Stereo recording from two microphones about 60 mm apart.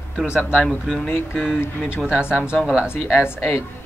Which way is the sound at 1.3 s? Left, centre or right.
Centre.